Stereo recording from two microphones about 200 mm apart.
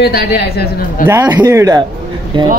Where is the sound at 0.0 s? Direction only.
55° left (ahead or behind).